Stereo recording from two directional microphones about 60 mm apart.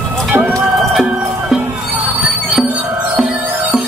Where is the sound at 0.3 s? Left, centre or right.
Right.